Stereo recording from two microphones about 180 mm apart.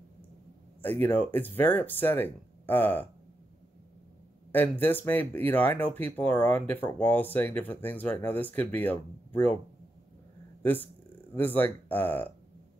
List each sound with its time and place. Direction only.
0.8 s speech: 10° left (ahead or behind)
4.5 s speech: 10° left (ahead or behind)
10.6 s speech: 10° left (ahead or behind)